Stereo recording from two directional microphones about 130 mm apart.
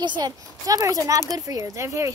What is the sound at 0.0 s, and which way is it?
Speech, 35° right (ahead or behind).